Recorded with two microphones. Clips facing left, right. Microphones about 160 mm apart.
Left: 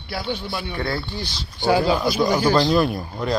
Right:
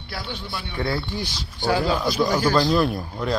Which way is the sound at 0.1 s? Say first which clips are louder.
Left 5 dB; 20° left (ahead or behind).